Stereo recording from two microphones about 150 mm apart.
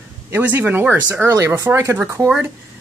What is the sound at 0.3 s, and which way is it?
Speech, 15° right (ahead or behind).